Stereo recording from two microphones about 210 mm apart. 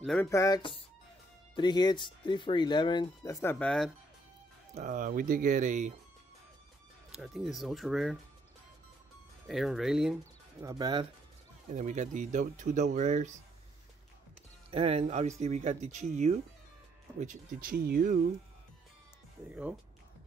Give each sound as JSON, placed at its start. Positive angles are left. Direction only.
{"t": 0.0, "sound": "speech", "side_deg": 5}
{"t": 0.3, "sound": "speech", "side_deg": 15}
{"t": 4.7, "sound": "speech", "side_deg": -40}
{"t": 7.1, "sound": "speech", "side_deg": 0}
{"t": 9.5, "sound": "speech", "side_deg": 0}
{"t": 10.6, "sound": "speech", "side_deg": -20}
{"t": 11.7, "sound": "speech", "side_deg": -35}
{"t": 14.7, "sound": "speech", "side_deg": -30}